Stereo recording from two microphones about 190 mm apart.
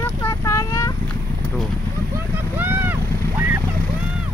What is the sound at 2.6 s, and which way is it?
Speech, 10° right (ahead or behind).